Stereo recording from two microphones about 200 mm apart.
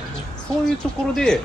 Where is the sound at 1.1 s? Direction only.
5° left (ahead or behind).